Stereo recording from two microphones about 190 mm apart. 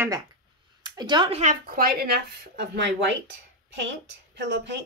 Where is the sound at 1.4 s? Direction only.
45° right (ahead or behind).